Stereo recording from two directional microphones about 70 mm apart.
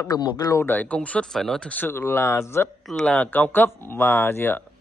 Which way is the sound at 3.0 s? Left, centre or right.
Left.